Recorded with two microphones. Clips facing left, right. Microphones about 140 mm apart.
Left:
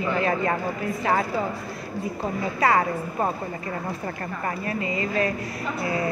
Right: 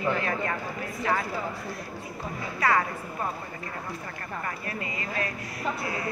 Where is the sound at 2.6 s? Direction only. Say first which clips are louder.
Left 3 dB; 30° left (ahead or behind).